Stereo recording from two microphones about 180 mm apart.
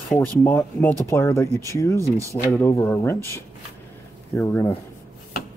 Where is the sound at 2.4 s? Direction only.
15° left (ahead or behind).